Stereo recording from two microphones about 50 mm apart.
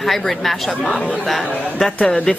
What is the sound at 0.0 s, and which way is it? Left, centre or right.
Speech, centre.